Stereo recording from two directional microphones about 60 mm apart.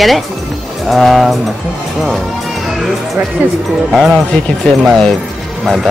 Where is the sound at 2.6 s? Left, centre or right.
Centre.